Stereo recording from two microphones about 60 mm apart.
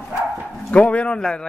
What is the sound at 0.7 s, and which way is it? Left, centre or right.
Speech, left.